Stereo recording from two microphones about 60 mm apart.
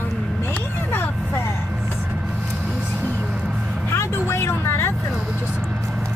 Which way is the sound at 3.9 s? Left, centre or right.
Left.